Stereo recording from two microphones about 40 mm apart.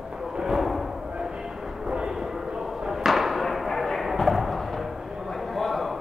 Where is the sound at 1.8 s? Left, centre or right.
Centre.